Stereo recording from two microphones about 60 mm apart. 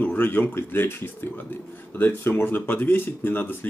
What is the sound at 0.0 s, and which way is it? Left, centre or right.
A man's voice, left.